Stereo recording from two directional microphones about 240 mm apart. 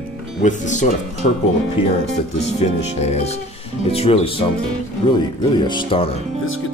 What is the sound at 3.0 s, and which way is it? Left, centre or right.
Speech, left.